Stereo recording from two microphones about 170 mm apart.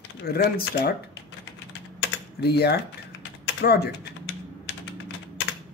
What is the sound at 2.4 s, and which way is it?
Speech, 70° left (ahead or behind).